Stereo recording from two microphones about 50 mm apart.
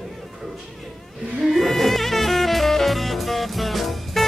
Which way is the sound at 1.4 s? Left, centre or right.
Centre.